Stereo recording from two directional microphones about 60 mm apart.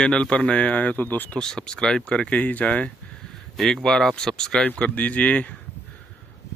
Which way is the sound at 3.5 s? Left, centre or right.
Centre.